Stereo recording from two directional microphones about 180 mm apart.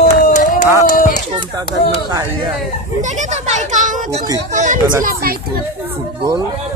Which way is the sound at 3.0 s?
40° right (ahead or behind).